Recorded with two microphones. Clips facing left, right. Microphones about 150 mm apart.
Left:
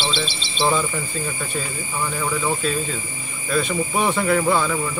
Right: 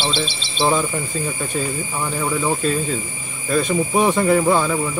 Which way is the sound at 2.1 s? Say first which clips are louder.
Right 3 dB; 15° right (ahead or behind).